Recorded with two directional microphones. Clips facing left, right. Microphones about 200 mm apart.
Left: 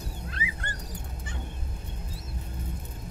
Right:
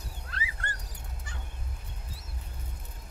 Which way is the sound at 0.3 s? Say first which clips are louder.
Even; 20° left (ahead or behind).